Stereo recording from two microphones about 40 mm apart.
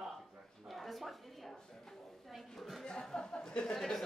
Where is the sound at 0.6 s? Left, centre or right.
Centre.